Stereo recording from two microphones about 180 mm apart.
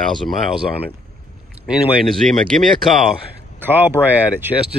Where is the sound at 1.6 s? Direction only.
Centre (ahead or behind).